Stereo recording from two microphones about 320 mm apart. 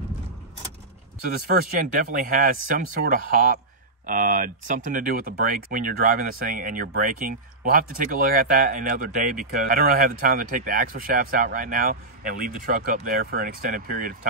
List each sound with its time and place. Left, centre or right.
1.8 s speech: right